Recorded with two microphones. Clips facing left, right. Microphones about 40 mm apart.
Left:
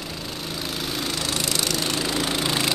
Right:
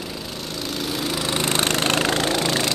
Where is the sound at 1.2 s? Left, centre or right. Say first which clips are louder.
Right 6 dB; right.